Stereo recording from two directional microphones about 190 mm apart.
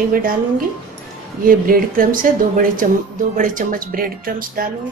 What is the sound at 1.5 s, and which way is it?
Speech, 50° right (ahead or behind).